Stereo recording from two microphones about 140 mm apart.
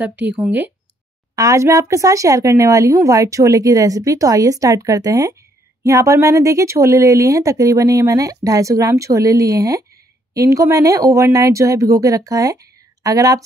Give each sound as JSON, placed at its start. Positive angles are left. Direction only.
{"t": 0.0, "sound": "speech", "side_deg": -10}